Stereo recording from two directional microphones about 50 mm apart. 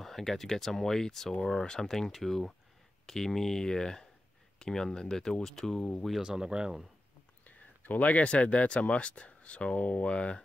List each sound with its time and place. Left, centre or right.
0.0 s speech: centre
6.2 s speech: centre
7.4 s speech: left